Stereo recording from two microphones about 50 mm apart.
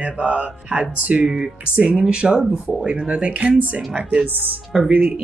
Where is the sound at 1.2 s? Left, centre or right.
Centre.